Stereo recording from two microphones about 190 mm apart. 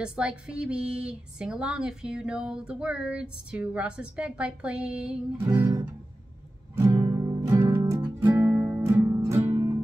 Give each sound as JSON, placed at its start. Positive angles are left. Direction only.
{"t": 0.0, "sound": "speech", "side_deg": -5}
{"t": 6.7, "sound": "music", "side_deg": -15}